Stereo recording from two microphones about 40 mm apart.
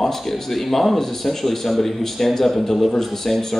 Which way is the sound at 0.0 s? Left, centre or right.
Centre.